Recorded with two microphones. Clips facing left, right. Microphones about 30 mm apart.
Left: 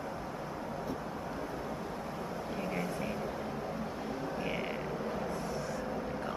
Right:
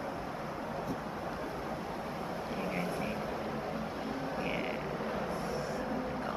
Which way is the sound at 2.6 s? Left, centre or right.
Centre.